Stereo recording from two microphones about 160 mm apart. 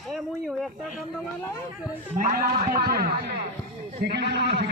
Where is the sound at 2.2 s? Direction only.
65° right (ahead or behind).